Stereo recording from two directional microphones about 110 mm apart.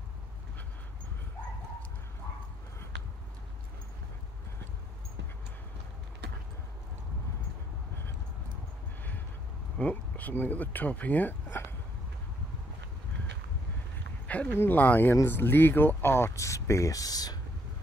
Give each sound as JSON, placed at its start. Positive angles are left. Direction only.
{"t": 9.8, "sound": "speech", "side_deg": 15}
{"t": 14.2, "sound": "speech", "side_deg": 15}